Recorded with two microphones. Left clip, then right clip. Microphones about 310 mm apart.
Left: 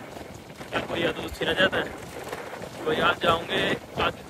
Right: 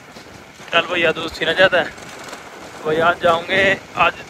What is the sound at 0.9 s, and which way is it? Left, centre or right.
Speech, centre.